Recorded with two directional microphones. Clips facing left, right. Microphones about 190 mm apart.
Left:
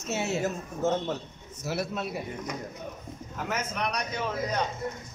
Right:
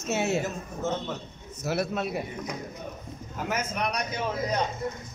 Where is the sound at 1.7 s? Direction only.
55° right (ahead or behind).